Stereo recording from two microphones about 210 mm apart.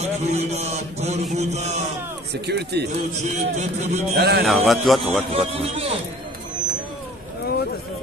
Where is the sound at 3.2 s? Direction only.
35° right (ahead or behind).